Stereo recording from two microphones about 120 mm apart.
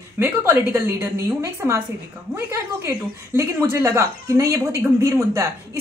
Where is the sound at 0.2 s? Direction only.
20° right (ahead or behind).